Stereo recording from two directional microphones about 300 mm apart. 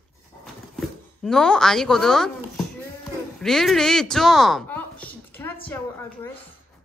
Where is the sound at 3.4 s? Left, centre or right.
Centre.